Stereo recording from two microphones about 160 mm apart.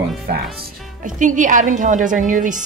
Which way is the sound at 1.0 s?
55° right (ahead or behind).